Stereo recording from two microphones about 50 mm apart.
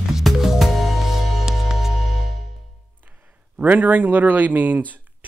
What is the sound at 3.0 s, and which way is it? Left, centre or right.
Speech, right.